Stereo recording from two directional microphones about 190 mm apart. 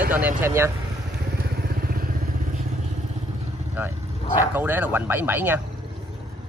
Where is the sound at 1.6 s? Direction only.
55° right (ahead or behind).